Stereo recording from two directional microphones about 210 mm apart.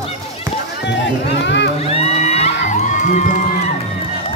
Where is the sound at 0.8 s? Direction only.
55° left (ahead or behind).